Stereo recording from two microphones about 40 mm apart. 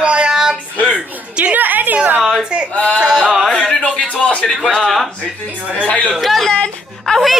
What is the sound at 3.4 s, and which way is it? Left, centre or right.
Speech, centre.